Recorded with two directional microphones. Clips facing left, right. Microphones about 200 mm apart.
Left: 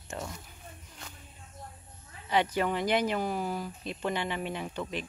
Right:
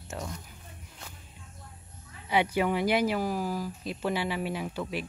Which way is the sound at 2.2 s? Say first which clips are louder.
Right 2 dB; 10° right (ahead or behind).